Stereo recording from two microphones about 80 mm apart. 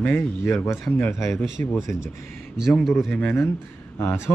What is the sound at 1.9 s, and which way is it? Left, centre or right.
Speech, left.